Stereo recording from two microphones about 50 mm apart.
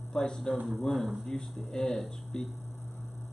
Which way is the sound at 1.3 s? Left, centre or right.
Centre.